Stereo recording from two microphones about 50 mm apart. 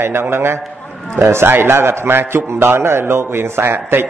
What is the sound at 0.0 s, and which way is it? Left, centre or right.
A man's voice, right.